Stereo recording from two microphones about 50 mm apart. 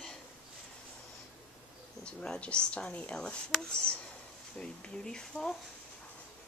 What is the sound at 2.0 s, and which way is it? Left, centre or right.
Speech, centre.